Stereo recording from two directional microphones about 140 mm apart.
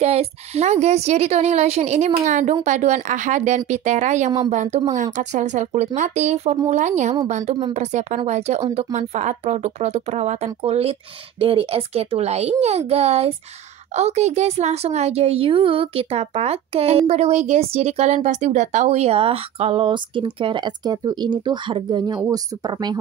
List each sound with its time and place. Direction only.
0.0 s a woman's voice: 50° right (ahead or behind); by 22.9 s 30° right (ahead or behind)